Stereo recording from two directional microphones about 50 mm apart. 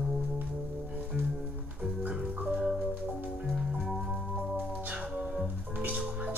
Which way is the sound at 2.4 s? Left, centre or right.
Centre.